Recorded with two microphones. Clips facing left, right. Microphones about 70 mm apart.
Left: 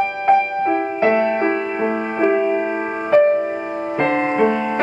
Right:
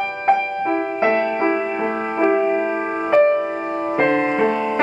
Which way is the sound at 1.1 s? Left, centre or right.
Centre.